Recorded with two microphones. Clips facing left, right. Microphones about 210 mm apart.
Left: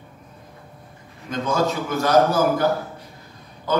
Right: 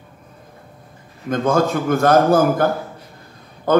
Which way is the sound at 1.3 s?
50° right (ahead or behind).